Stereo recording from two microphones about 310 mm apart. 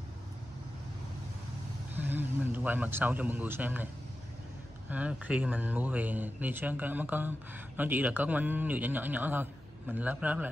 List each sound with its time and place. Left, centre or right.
2.0 s speech: centre